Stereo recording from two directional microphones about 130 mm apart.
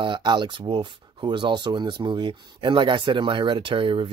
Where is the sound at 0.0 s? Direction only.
35° right (ahead or behind).